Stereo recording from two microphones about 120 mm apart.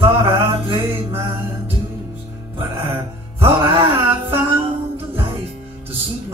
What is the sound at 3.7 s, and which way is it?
Music, 50° right (ahead or behind).